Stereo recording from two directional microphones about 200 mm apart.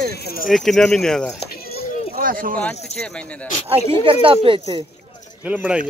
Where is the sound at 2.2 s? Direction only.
45° right (ahead or behind).